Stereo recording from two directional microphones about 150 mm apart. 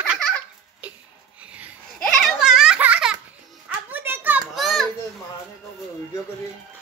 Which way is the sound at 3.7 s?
10° right (ahead or behind).